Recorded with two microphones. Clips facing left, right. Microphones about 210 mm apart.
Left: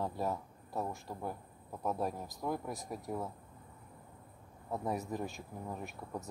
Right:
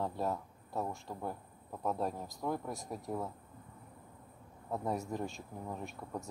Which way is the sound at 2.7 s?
15° left (ahead or behind).